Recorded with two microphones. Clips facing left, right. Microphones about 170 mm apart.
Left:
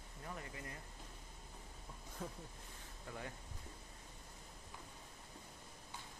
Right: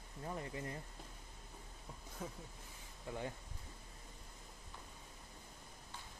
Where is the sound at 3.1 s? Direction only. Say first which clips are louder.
Right 5 dB; 20° right (ahead or behind).